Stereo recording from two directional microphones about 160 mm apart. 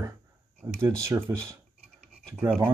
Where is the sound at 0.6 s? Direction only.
15° right (ahead or behind).